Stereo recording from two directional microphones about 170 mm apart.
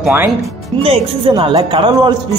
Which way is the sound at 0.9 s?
30° right (ahead or behind).